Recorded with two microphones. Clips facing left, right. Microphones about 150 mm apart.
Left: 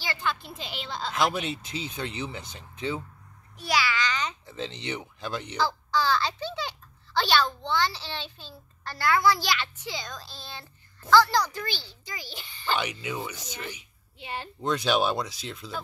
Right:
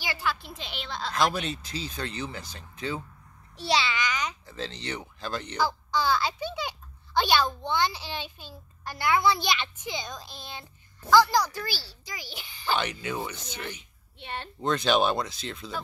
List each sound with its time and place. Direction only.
0.0 s speech: 10° right (ahead or behind); by 3.0 s 20° left (ahead or behind)
3.5 s a child's voice: 25° right (ahead or behind); by 4.4 s 10° right (ahead or behind)
4.5 s speech: 20° left (ahead or behind)
5.6 s a child's voice: 15° right (ahead or behind)
12.9 s speech: centre (ahead or behind)